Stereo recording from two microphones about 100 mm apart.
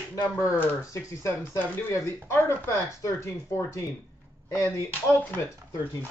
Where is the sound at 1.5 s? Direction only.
15° left (ahead or behind).